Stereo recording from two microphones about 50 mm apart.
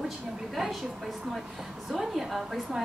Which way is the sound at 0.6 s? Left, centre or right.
Centre.